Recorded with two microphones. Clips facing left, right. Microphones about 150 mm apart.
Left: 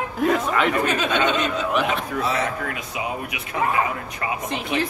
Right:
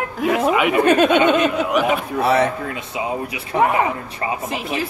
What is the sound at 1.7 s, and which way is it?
Speech, 10° right (ahead or behind).